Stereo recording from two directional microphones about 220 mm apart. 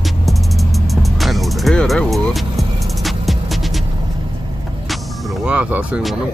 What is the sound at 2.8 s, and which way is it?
Vehicle, centre (ahead or behind).